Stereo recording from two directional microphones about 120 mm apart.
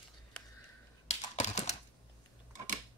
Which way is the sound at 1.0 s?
70° left (ahead or behind).